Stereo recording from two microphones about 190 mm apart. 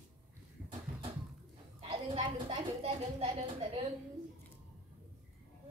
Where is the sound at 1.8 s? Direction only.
30° right (ahead or behind).